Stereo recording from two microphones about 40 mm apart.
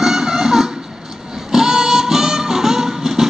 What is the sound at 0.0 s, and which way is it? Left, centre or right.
Music, centre.